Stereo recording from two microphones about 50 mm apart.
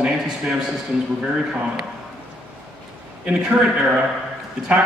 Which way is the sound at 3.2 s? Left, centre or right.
Right.